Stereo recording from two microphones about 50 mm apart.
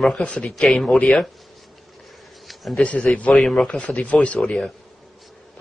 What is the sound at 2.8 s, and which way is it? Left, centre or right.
Speech, centre.